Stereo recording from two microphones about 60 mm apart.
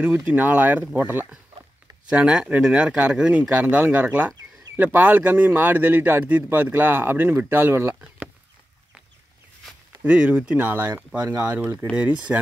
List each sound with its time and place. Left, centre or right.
0.0 s speech: right
2.0 s speech: centre; by 7.9 s right
7.9 s chop: right
10.0 s speech: centre
10.7 s speech: right
11.2 s speech: right
11.6 s speech: right
12.0 s speech: right